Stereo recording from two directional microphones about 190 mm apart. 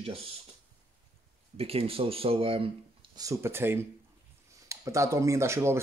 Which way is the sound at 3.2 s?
15° right (ahead or behind).